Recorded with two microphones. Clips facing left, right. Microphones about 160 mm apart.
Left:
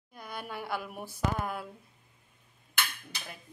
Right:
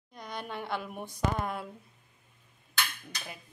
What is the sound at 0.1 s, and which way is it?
A woman's voice, 5° left (ahead or behind).